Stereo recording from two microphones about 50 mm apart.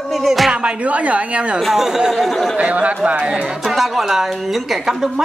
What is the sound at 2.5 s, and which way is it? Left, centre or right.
Speech, right.